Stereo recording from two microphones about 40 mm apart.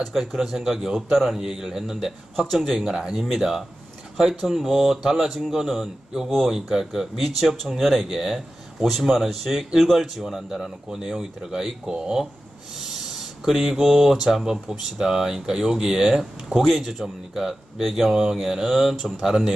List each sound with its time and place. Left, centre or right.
0.0 s speech: centre
1.4 s speech: centre